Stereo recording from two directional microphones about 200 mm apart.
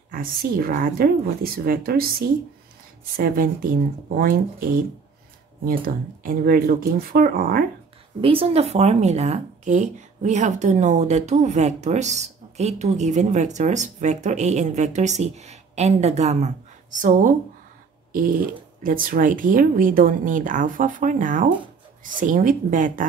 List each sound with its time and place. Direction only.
0.1 s a woman's voice: 45° right (ahead or behind)
8.2 s speech: 30° right (ahead or behind)
18.8 s speech: 45° right (ahead or behind)